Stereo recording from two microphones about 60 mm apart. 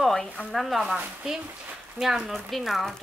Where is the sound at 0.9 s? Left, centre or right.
Centre.